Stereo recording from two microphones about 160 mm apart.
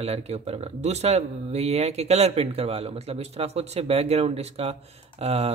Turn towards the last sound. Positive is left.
turn(degrees=-40)  # may be behind; listen again after turning